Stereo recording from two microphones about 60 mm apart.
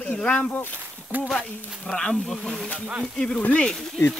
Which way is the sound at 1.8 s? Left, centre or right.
Centre.